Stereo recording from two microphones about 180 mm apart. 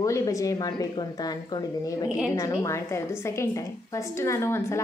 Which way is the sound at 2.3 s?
20° left (ahead or behind).